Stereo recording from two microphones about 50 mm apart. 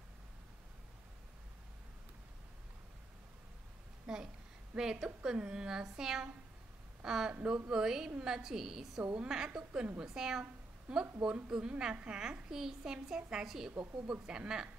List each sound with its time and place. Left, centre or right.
4.1 s a sound: centre
4.7 s a woman's voice: centre
9.0 s a woman's voice: right
10.0 s a woman's voice: centre
12.2 s a woman's voice: centre